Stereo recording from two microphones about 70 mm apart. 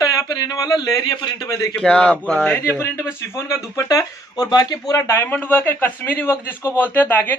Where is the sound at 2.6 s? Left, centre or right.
Left.